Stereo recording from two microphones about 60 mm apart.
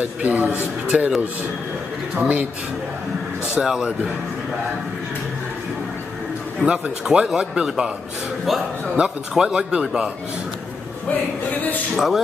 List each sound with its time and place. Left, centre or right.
0.0 s a man's voice: right
2.1 s a man's voice: right
3.6 s a man's voice: centre
6.6 s a man's voice: centre
9.0 s a man's voice: centre
11.5 s speech: left
11.9 s music: centre